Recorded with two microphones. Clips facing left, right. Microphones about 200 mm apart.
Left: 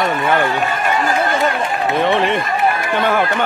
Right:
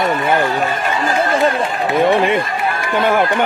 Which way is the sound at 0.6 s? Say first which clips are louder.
Even; 30° right (ahead or behind).